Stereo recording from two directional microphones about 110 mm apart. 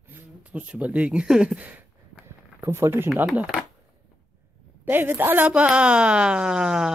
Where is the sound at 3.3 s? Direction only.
10° right (ahead or behind).